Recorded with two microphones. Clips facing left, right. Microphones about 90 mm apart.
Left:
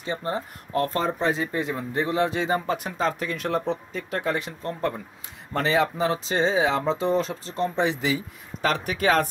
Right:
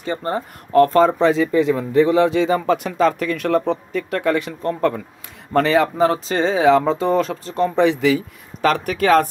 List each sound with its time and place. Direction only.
0.0 s speech: 55° right (ahead or behind); by 5.0 s 80° right
5.5 s speech: 55° right (ahead or behind)